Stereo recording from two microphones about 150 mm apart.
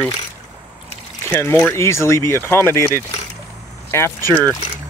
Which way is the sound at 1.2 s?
15° left (ahead or behind).